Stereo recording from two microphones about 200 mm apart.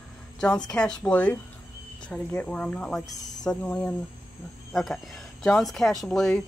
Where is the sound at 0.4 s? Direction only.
5° left (ahead or behind).